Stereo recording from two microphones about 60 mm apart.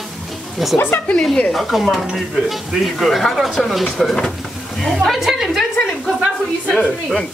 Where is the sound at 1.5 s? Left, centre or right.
Centre.